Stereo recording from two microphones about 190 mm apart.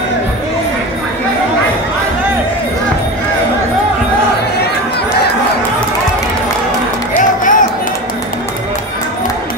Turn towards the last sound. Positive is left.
turn(degrees=45)  # may be behind; listen again after turning